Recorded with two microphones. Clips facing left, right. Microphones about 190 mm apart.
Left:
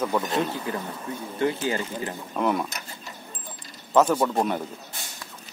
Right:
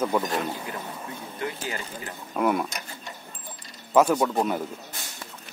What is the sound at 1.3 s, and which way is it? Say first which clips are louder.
Speech: left 8 dB; 30° left (ahead or behind).